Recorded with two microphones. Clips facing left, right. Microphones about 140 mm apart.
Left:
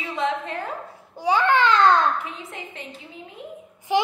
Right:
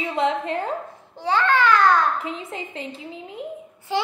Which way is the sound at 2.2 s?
30° right (ahead or behind).